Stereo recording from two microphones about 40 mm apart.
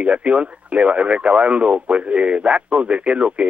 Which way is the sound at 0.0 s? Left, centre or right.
Right.